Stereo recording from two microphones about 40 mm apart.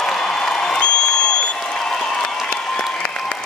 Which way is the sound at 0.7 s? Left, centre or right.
Left.